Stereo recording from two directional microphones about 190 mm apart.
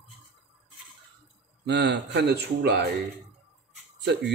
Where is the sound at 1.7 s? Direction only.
65° right (ahead or behind).